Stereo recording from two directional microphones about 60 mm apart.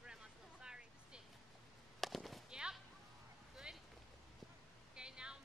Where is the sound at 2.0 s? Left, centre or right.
Centre.